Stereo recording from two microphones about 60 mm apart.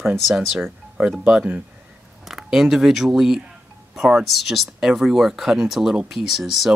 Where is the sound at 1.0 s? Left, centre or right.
Right.